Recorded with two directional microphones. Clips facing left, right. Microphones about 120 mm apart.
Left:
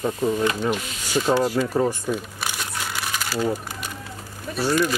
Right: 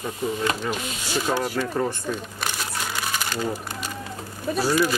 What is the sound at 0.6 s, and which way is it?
Speech, 15° left (ahead or behind).